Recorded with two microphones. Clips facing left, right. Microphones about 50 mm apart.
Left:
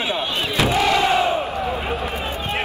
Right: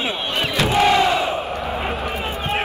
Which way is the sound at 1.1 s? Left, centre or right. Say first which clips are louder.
Left 2 dB; left.